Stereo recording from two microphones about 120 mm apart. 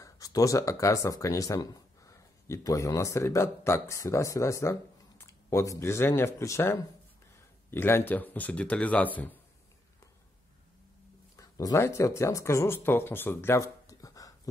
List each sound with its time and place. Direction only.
0.0 s a man's voice: 30° left (ahead or behind); by 9.4 s 15° left (ahead or behind)
11.3 s speech: 30° left (ahead or behind)